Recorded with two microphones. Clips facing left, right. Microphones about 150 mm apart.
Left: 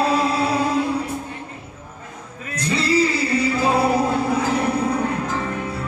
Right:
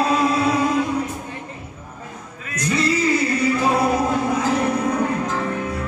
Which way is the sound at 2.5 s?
30° left (ahead or behind).